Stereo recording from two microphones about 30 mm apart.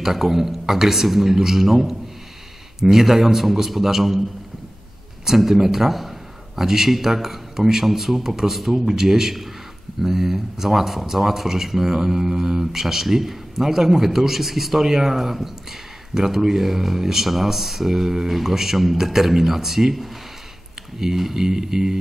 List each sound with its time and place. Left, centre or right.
0.0 s speech: centre
5.2 s a man's voice: centre